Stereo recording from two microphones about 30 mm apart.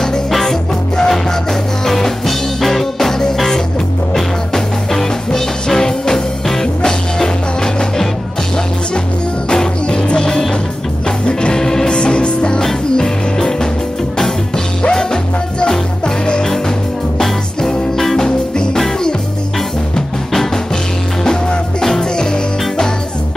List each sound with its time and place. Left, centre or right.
0.3 s music: centre
4.9 s music: centre
9.5 s music: left
11.5 s music: centre
11.9 s music: left
12.9 s music: centre
14.8 s music: left
17.9 s music: centre
21.2 s music: left